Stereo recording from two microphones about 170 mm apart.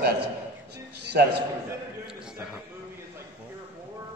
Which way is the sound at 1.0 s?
75° right (ahead or behind).